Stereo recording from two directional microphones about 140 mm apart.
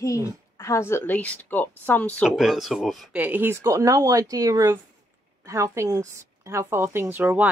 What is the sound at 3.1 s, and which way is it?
Speech, 15° right (ahead or behind).